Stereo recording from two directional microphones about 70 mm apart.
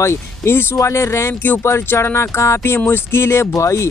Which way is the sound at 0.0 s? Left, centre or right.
Left.